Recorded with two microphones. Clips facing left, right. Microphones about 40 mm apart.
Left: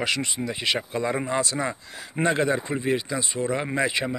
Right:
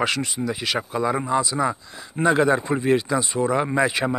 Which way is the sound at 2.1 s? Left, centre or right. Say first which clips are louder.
Right 3 dB; left.